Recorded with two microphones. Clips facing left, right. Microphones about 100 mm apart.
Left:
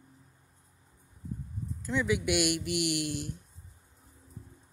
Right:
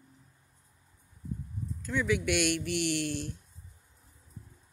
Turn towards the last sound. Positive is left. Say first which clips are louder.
# even
turn(degrees=15)  # may be behind; listen again after turning